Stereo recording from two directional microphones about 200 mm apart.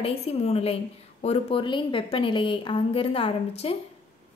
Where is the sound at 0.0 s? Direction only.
30° left (ahead or behind).